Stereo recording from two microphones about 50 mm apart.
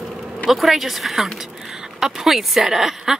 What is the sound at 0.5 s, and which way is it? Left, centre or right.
Speech, centre.